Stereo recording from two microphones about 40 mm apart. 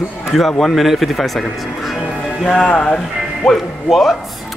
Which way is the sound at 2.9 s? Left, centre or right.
Centre.